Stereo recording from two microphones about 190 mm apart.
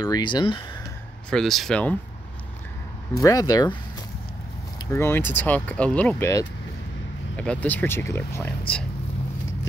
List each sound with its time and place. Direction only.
0.0 s speech: 20° left (ahead or behind)
1.3 s speech: centre (ahead or behind)
3.2 s speech: 20° left (ahead or behind)
4.9 s speech: 10° left (ahead or behind)